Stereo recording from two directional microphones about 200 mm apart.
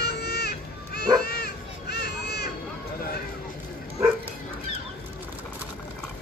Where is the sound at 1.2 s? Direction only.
50° left (ahead or behind).